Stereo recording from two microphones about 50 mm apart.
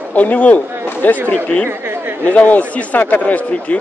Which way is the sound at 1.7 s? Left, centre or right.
Right.